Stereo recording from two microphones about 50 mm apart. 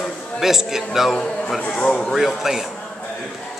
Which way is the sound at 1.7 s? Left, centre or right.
Centre.